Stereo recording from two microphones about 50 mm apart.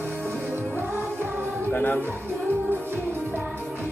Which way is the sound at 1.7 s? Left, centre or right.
Left.